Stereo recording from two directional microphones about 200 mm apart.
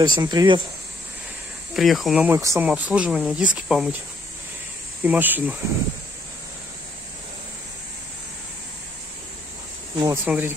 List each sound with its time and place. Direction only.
0.0 s speech: 20° right (ahead or behind)
1.8 s speech: centre (ahead or behind)
5.0 s speech: 10° right (ahead or behind)
9.9 s speech: 15° right (ahead or behind)